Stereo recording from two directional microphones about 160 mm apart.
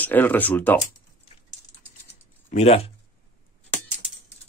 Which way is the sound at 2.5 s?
40° left (ahead or behind).